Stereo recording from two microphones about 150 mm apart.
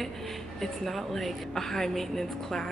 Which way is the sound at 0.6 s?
Centre (ahead or behind).